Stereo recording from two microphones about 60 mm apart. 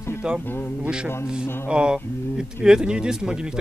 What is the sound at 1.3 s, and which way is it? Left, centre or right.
Speech, centre.